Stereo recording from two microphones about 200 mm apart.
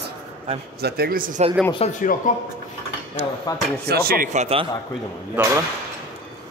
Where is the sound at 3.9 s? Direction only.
45° right (ahead or behind).